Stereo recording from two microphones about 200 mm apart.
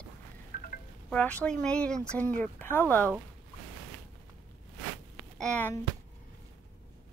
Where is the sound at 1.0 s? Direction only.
5° left (ahead or behind).